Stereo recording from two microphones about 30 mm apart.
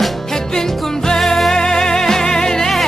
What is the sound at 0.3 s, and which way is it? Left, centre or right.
Music, centre.